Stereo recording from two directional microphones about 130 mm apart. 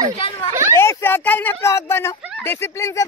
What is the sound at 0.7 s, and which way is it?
Speech, 20° left (ahead or behind).